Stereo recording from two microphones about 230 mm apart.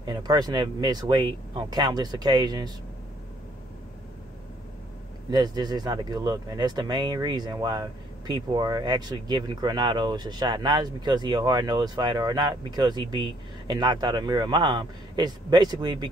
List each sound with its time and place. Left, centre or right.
0.0 s speech: centre
5.3 s speech: centre